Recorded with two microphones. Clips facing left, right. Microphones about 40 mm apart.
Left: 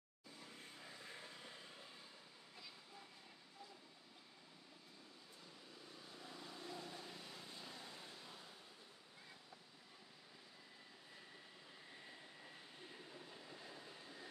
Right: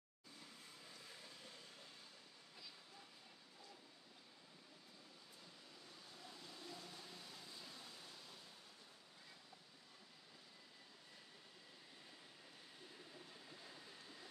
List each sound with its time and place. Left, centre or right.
0.8 s vehicle: left
6.3 s vehicle: left